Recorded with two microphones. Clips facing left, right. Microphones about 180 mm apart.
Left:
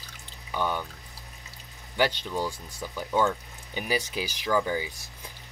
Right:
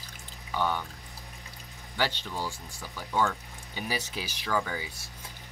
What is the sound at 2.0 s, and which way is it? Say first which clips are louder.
Speech: left 5 dB; 15° left (ahead or behind).